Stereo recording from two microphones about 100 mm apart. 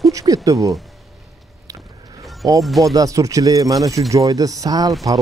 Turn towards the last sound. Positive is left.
turn(degrees=-40)  # may be behind; listen again after turning